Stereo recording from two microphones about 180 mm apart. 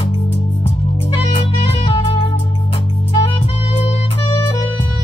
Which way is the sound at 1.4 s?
30° left (ahead or behind).